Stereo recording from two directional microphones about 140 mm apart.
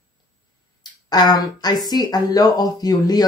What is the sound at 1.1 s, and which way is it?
Speech, 30° left (ahead or behind).